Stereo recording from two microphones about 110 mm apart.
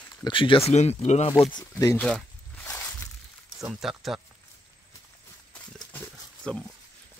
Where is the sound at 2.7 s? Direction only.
25° left (ahead or behind).